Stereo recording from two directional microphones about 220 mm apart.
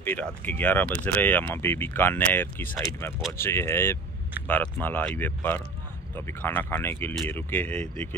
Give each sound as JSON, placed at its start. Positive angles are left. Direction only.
{"t": 0.0, "sound": "speech", "side_deg": 5}